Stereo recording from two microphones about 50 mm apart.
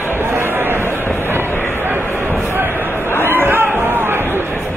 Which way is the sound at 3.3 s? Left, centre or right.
Right.